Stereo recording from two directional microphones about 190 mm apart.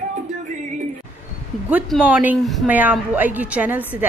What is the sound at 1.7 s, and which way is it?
A woman's voice, 5° right (ahead or behind).